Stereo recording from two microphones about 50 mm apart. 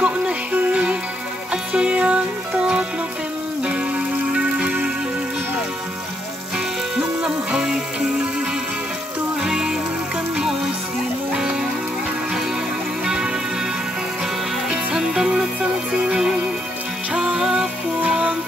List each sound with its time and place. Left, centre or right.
0.0 s music: right
4.3 s music: centre
7.2 s music: centre
9.4 s music: centre
13.0 s music: centre
14.7 s music: centre